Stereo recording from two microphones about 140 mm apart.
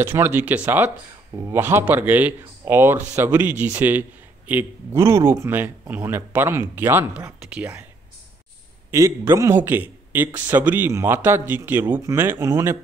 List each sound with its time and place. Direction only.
0.0 s speech: 15° right (ahead or behind)
8.9 s speech: 20° right (ahead or behind)